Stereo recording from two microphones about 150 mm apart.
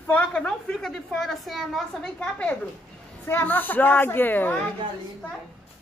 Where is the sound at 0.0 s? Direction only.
5° left (ahead or behind).